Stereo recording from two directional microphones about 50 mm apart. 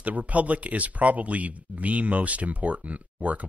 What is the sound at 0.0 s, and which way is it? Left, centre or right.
Speech, right.